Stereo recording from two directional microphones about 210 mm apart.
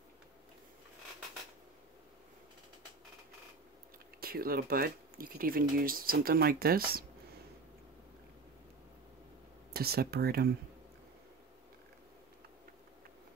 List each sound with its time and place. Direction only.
4.2 s speech: 45° right (ahead or behind)
9.7 s speech: 50° right (ahead or behind)